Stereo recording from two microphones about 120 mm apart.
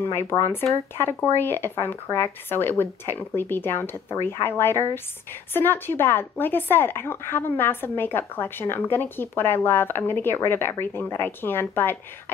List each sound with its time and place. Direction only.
0.0 s speech: 20° left (ahead or behind)